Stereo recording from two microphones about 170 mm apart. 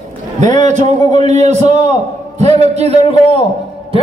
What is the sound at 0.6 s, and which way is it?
A man's voice, 45° right (ahead or behind).